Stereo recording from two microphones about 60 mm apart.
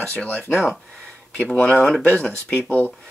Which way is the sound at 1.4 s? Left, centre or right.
Centre.